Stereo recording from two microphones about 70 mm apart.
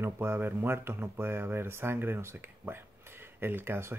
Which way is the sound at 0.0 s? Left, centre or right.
Right.